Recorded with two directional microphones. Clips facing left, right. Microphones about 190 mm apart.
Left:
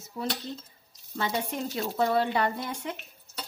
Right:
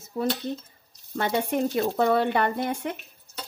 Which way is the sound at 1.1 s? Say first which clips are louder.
Right 6 dB; 55° right (ahead or behind).